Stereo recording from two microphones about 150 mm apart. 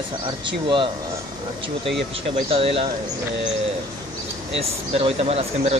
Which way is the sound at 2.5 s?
40° right (ahead or behind).